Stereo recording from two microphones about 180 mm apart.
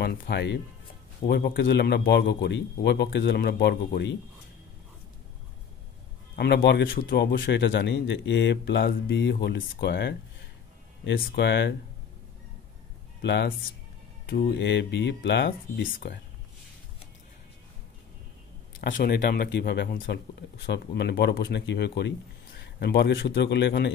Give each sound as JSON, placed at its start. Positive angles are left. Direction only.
{"t": 0.0, "sound": "a man's voice", "side_deg": 60}
{"t": 1.2, "sound": "a man's voice", "side_deg": 60}
{"t": 3.3, "sound": "speech", "side_deg": 60}
{"t": 6.3, "sound": "a man's voice", "side_deg": 65}
{"t": 13.2, "sound": "a man's voice", "side_deg": 75}
{"t": 14.2, "sound": "a man's voice", "side_deg": 60}
{"t": 18.8, "sound": "a man's voice", "side_deg": 50}